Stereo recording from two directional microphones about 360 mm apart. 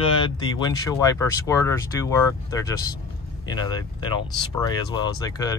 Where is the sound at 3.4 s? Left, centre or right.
Centre.